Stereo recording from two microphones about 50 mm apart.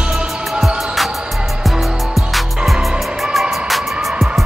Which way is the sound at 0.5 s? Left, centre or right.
Centre.